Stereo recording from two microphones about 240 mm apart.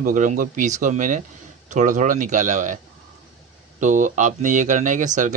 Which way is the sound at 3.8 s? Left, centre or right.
Right.